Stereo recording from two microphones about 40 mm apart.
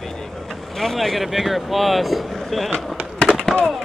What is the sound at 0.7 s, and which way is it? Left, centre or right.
Speech, centre.